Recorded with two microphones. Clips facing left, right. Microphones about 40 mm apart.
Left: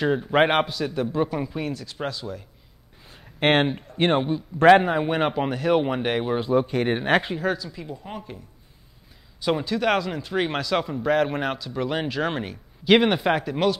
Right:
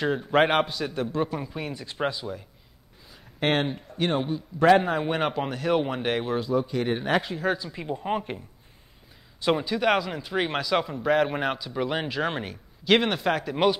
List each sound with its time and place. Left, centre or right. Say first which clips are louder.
0.0 s speech: left 2 dB; centre
0.7 s speech: left 3 dB; centre
1.7 s speech: right 1 dB; centre
3.1 s a sound: left 5 dB; left
3.7 s speech: left 5 dB; left
4.8 s speech: left 3 dB; centre
6.4 s speech: left 4 dB; left
7.5 s speech: right 2 dB; right
9.4 s speech: even; centre